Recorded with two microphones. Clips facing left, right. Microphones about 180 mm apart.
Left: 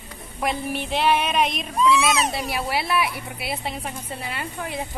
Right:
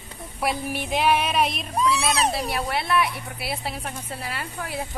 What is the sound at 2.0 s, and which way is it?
Speech, 35° right (ahead or behind).